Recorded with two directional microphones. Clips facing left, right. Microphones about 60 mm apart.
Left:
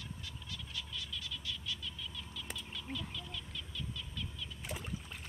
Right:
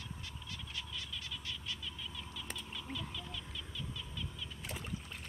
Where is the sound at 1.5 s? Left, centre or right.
Right.